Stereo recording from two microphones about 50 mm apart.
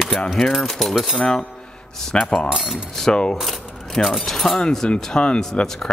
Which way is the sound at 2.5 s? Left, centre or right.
Centre.